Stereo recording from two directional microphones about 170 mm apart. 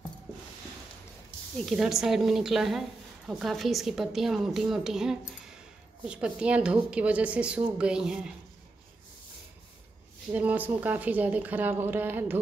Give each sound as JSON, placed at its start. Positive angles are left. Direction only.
{"t": 1.7, "sound": "a woman's voice", "side_deg": 0}
{"t": 10.3, "sound": "a woman's voice", "side_deg": -10}